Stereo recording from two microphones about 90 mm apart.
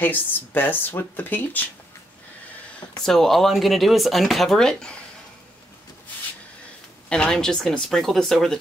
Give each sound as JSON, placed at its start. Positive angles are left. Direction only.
{"t": 0.0, "sound": "speech", "side_deg": 20}
{"t": 3.0, "sound": "speech", "side_deg": 5}
{"t": 7.1, "sound": "speech", "side_deg": 10}